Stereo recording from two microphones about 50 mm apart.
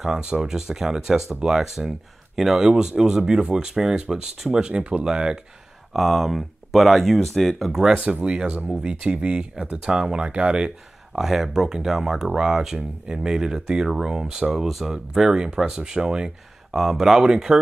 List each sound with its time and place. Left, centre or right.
0.2 s speech: centre
5.9 s speech: centre
7.9 s speech: right
11.1 s speech: centre
16.7 s speech: centre